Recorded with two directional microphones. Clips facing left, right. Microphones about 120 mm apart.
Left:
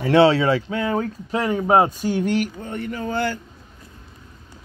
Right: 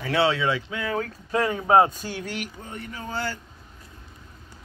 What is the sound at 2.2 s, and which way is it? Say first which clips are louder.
Speech: left 12 dB; 30° left (ahead or behind).